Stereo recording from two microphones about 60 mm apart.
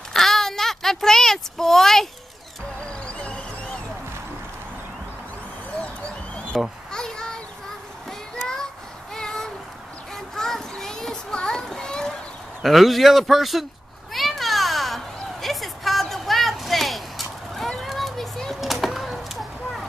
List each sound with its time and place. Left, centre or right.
0.1 s a sound: centre
2.8 s music: centre
6.5 s speech: centre
6.9 s children playing: centre
8.1 s child singing: centre
9.1 s a sound: centre
10.1 s children playing: centre
12.6 s speech: centre
14.1 s cat: centre